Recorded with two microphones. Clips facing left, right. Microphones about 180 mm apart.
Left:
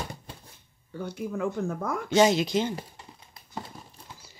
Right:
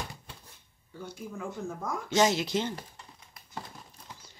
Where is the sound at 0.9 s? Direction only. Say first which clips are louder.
Left 8 dB; 65° left (ahead or behind).